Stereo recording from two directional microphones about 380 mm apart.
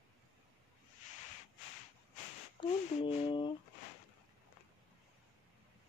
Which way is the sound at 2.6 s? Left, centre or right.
Centre.